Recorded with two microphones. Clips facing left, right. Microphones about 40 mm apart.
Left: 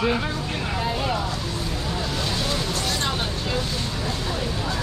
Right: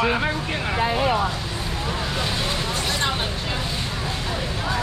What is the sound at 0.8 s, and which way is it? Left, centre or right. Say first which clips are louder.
Vehicle: right 6 dB; right.